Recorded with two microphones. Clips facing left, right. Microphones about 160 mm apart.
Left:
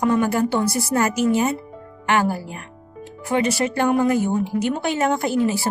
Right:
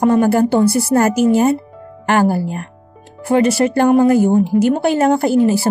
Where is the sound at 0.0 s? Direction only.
40° right (ahead or behind).